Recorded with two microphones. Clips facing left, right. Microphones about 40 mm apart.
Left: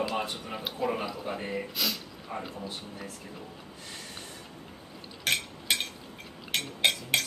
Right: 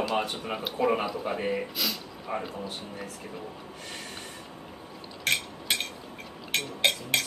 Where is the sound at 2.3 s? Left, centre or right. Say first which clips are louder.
Right 5 dB; right.